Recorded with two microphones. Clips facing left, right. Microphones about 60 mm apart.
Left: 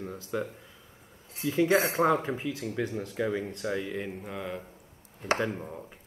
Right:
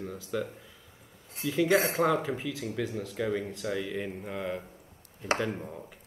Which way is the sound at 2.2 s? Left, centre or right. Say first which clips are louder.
Left 1 dB; centre.